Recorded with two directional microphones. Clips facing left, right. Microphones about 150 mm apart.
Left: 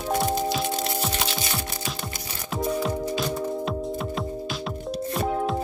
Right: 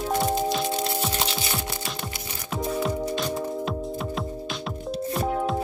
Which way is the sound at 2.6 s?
Centre (ahead or behind).